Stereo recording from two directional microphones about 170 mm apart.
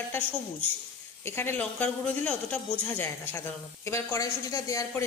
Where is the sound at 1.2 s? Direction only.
15° left (ahead or behind).